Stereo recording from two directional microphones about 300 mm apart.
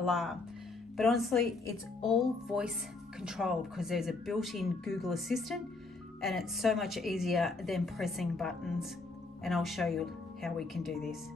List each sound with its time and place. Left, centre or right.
0.0 s speech: centre